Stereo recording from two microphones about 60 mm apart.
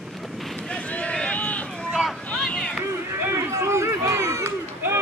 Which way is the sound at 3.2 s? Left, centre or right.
Right.